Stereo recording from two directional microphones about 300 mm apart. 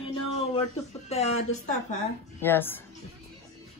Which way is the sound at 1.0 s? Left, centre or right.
Left.